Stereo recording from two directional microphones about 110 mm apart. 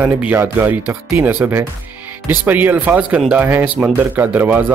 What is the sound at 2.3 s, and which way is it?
Speech, 15° right (ahead or behind).